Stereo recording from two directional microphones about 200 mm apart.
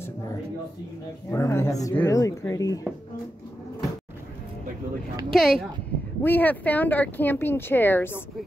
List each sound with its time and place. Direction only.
1.3 s speech: 15° left (ahead or behind)
5.3 s speech: centre (ahead or behind)